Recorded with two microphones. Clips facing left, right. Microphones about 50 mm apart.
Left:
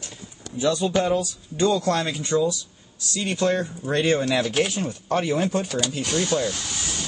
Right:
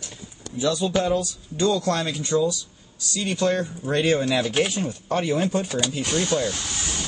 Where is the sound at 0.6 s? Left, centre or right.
Left; by 4.3 s centre.